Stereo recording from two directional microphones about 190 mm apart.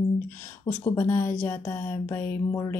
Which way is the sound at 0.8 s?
15° left (ahead or behind).